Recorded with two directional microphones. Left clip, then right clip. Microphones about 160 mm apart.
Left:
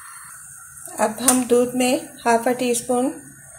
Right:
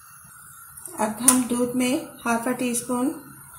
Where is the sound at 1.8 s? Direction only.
15° left (ahead or behind).